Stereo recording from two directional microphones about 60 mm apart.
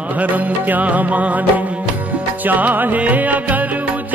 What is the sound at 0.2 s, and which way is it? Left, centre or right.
Music, right.